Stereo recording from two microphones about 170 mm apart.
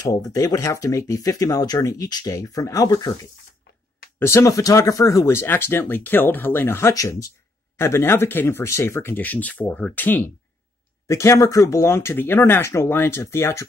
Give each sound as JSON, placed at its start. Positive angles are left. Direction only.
{"t": 0.0, "sound": "speech", "side_deg": 20}